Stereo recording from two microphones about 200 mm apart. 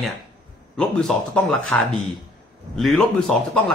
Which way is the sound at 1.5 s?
80° right.